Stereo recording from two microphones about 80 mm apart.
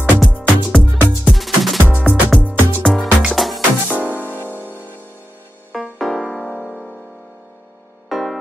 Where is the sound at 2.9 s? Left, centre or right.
Centre.